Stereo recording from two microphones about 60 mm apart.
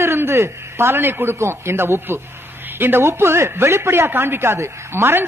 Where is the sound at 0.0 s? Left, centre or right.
Right.